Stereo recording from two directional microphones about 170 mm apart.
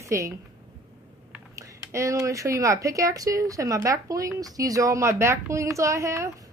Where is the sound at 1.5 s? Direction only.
15° right (ahead or behind).